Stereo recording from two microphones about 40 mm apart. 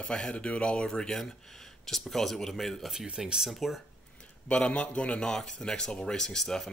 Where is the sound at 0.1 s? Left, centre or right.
Left.